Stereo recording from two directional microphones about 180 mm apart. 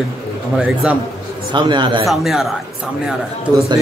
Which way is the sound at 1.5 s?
25° right (ahead or behind).